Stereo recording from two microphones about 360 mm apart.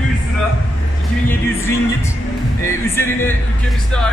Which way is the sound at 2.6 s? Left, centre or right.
Centre.